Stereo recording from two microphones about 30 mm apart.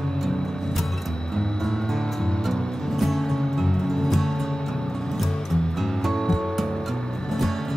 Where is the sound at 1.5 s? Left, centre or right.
Centre.